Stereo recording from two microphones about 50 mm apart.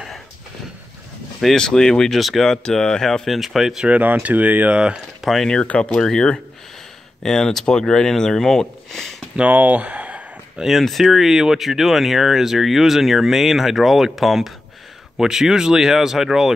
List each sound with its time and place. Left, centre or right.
1.4 s speech: centre
2.1 s speech: centre
2.4 s speech: centre
3.8 s speech: right
4.7 s speech: centre
5.2 s speech: centre
5.7 s speech: left
9.5 s speech: right
10.6 s speech: centre